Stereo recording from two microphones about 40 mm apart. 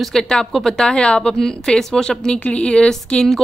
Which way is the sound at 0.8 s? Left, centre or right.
Left.